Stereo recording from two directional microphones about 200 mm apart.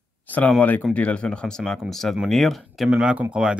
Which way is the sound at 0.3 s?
5° left (ahead or behind).